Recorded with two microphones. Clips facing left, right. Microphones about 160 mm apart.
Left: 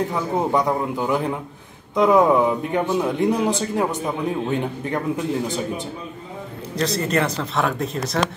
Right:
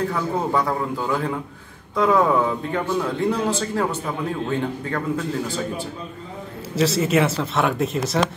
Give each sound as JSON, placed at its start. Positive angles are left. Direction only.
{"t": 0.1, "sound": "a man's voice", "side_deg": 20}
{"t": 6.7, "sound": "speech", "side_deg": -5}